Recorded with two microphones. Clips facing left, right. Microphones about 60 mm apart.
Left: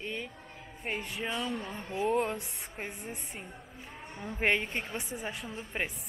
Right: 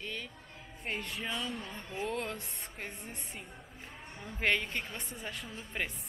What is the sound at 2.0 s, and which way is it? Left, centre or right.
Speech, left.